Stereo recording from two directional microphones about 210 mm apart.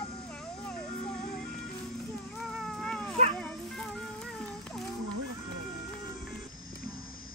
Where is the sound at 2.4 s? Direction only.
Centre (ahead or behind).